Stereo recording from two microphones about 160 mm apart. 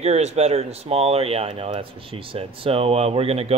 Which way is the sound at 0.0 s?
40° right (ahead or behind).